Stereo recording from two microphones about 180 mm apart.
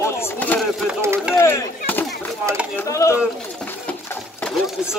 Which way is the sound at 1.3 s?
15° left (ahead or behind).